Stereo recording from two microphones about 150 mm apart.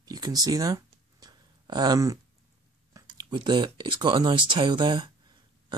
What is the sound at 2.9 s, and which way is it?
Speech, 30° right (ahead or behind).